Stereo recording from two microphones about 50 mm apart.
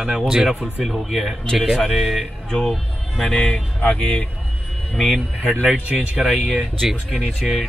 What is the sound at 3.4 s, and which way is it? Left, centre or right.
Speech, centre.